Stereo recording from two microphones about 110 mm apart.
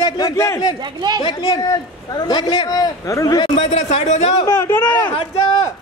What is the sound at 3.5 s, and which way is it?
Speech, 85° left.